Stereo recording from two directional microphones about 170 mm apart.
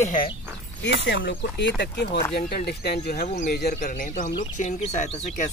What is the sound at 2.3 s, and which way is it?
Speech, 70° left (ahead or behind).